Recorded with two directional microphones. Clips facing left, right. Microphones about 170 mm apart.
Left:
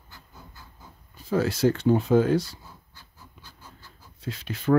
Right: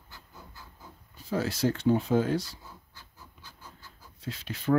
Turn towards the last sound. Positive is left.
turn(degrees=65)  # may be behind; listen again after turning